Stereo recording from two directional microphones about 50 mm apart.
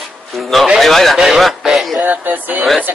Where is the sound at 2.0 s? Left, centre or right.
Right.